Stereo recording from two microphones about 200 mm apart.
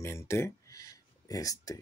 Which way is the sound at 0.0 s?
15° left (ahead or behind).